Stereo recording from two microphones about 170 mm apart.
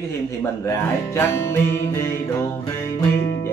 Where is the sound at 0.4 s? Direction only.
15° left (ahead or behind).